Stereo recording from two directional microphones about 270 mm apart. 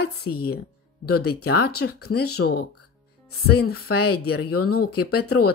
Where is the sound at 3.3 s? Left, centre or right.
Left.